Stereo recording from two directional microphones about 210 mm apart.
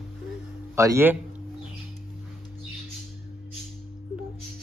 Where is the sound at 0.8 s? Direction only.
15° right (ahead or behind).